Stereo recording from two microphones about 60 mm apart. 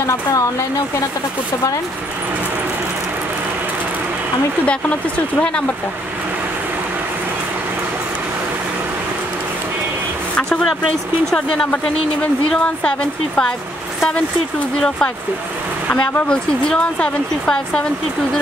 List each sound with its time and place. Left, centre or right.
0.0 s speech: left
10.6 s speech: centre
16.3 s speech: centre